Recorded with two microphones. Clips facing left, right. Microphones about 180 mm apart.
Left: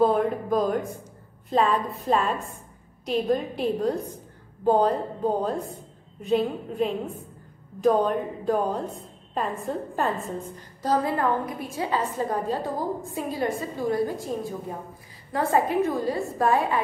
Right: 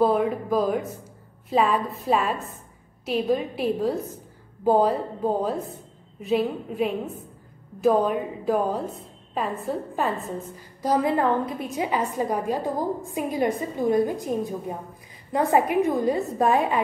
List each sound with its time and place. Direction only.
0.0 s a woman's voice: centre (ahead or behind)
10.8 s a woman's voice: 15° right (ahead or behind)